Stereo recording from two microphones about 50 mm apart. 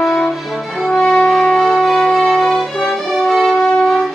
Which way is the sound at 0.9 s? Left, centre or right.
Centre.